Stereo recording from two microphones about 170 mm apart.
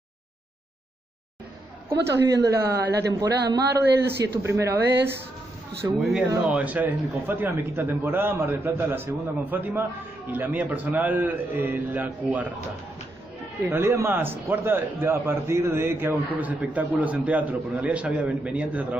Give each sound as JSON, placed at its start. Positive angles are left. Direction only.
{"t": 2.1, "sound": "a woman's voice", "side_deg": -70}
{"t": 3.1, "sound": "speech", "side_deg": -20}
{"t": 4.0, "sound": "a woman's voice", "side_deg": -70}
{"t": 4.4, "sound": "a man's voice", "side_deg": -15}
{"t": 5.9, "sound": "a man's voice", "side_deg": 0}
{"t": 13.6, "sound": "a man's voice", "side_deg": -15}